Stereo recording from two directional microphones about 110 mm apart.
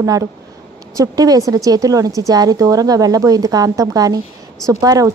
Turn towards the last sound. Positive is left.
turn(degrees=-35)  # may be behind; listen again after turning